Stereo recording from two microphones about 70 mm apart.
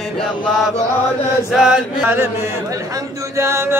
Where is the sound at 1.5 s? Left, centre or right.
Centre.